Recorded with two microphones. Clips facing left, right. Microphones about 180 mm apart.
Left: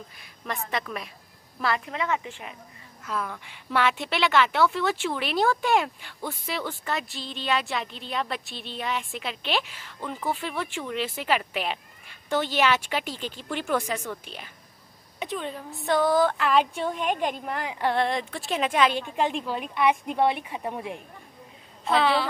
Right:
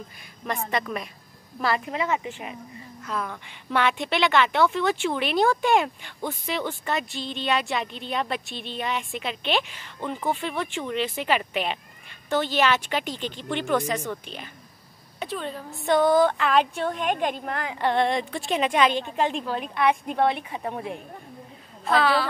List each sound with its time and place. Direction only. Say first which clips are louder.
0.5 s speech: right 3 dB; centre (ahead or behind)
1.9 s speech: right 2 dB; 15° right (ahead or behind)
2.2 s speech: right 4 dB; 5° right (ahead or behind)
3.1 s a woman's voice: even; 5° left (ahead or behind)
15.8 s speech: right 3 dB; centre (ahead or behind)
21.9 s a woman's voice: right 1 dB; 20° left (ahead or behind)